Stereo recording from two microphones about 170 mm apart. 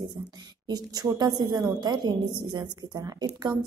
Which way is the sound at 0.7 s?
20° right (ahead or behind).